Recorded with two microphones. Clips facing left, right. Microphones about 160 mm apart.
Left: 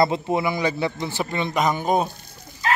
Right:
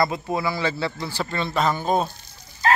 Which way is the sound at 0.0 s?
25° left (ahead or behind).